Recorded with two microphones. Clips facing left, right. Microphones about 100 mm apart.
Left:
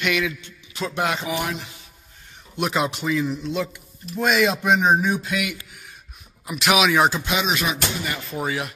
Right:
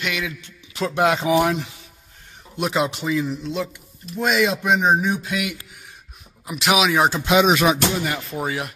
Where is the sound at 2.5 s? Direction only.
25° right (ahead or behind).